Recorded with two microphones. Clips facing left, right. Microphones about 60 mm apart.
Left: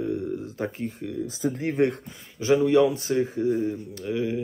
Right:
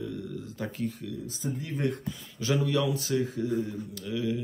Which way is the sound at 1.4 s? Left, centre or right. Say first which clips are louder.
Left 8 dB; left.